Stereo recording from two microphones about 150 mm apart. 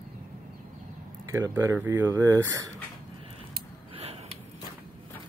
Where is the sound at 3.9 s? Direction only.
40° right (ahead or behind).